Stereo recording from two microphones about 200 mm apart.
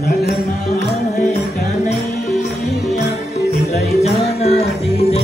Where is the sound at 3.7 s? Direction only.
30° left (ahead or behind).